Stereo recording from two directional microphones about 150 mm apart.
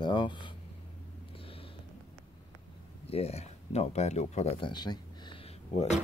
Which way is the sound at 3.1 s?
45° left (ahead or behind).